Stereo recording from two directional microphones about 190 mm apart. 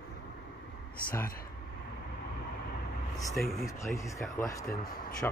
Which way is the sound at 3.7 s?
15° left (ahead or behind).